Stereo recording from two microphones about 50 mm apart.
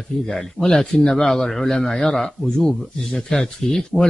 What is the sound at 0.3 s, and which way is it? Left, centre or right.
A man's voice, centre.